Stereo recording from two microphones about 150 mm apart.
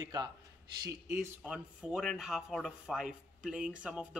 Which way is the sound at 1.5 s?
5° right (ahead or behind).